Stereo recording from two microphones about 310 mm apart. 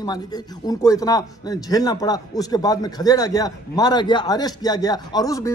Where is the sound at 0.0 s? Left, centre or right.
Centre.